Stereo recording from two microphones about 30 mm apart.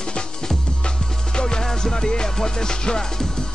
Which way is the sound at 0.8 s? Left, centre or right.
Left.